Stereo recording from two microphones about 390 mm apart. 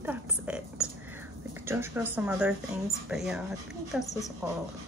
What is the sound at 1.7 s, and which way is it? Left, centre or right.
A woman's voice, centre.